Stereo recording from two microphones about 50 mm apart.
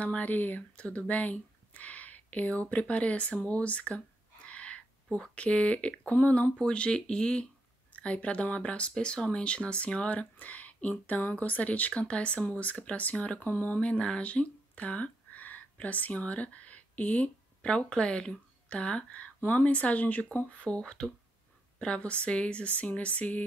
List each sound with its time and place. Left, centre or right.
0.0 s speech: left
0.7 s speech: left
4.5 s a sound: left
5.2 s speech: left
13.4 s speech: left
13.7 s speech: left